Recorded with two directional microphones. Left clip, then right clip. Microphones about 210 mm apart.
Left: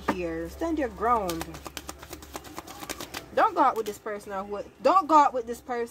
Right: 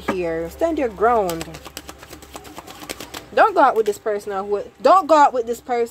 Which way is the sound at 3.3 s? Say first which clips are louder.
Right 8 dB; 55° right (ahead or behind).